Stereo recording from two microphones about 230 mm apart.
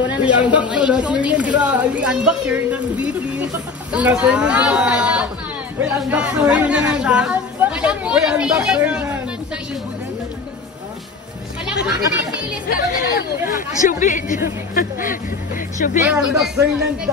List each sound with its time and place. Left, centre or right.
0.1 s speech: centre
12.7 s speech: left
16.1 s speech: centre